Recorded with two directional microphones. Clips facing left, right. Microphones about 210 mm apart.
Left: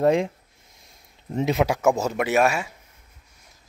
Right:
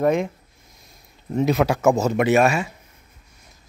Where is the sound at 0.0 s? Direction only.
30° left (ahead or behind).